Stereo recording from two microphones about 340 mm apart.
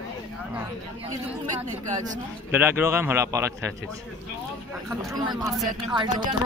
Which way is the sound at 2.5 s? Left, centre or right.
Centre.